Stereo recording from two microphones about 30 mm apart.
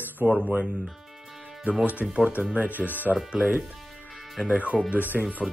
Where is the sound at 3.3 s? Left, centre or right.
Right.